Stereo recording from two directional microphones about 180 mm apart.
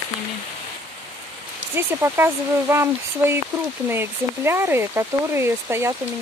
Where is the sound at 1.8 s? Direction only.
15° right (ahead or behind).